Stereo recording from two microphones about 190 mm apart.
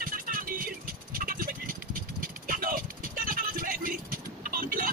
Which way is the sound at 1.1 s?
45° right (ahead or behind).